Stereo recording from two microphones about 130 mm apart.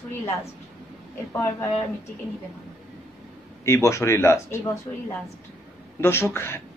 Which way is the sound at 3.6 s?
20° left (ahead or behind).